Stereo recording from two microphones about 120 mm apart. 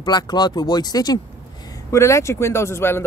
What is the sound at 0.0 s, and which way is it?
Speech, 35° left (ahead or behind).